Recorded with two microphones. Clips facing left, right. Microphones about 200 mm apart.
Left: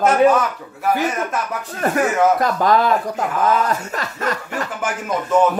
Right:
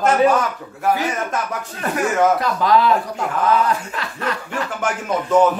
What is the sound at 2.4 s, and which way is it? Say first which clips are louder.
Speech: left 1 dB; 50° left (ahead or behind).